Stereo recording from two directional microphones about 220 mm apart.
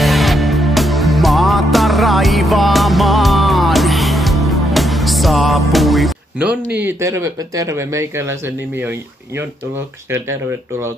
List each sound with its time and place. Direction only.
0.0 s music: centre (ahead or behind)
6.8 s speech: 10° right (ahead or behind)